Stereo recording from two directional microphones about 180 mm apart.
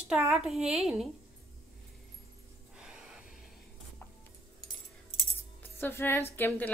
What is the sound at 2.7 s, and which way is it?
Gasp, 5° right (ahead or behind).